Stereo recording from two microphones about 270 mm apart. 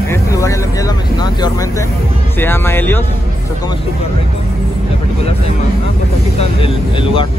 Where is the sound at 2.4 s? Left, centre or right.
Centre.